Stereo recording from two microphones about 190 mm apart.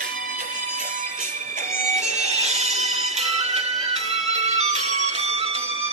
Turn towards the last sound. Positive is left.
turn(degrees=-35)  # may be behind; listen again after turning